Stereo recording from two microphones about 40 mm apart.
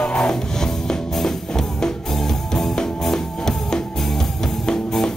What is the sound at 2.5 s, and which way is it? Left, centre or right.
Music, centre.